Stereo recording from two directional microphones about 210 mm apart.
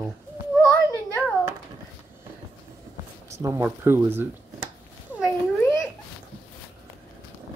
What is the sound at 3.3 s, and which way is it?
Speech, 15° right (ahead or behind).